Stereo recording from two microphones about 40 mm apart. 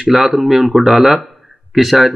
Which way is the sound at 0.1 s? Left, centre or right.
Centre.